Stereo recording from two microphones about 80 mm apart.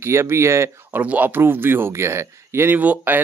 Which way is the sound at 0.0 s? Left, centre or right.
Right.